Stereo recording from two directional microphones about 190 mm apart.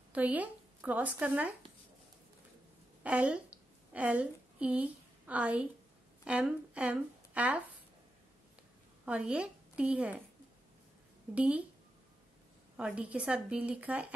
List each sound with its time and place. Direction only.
0.1 s speech: 10° right (ahead or behind)
3.0 s a woman's voice: 5° right (ahead or behind)
9.0 s a woman's voice: 5° right (ahead or behind)
11.3 s a woman's voice: 5° right (ahead or behind)
12.7 s a woman's voice: 5° right (ahead or behind)